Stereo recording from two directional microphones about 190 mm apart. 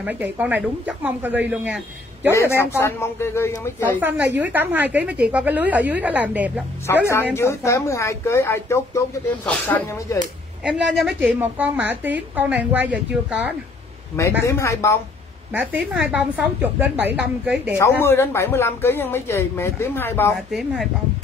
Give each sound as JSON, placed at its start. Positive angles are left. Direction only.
{"t": 0.0, "sound": "a woman's voice", "side_deg": -10}
{"t": 2.3, "sound": "speech", "side_deg": 15}
{"t": 4.4, "sound": "a woman's voice", "side_deg": -10}
{"t": 6.9, "sound": "speech", "side_deg": 10}
{"t": 10.9, "sound": "a woman's voice", "side_deg": -5}
{"t": 14.4, "sound": "speech", "side_deg": 15}
{"t": 15.5, "sound": "a woman's voice", "side_deg": -5}
{"t": 17.0, "sound": "a woman's voice", "side_deg": -65}
{"t": 17.7, "sound": "speech", "side_deg": 15}
{"t": 20.3, "sound": "a woman's voice", "side_deg": 0}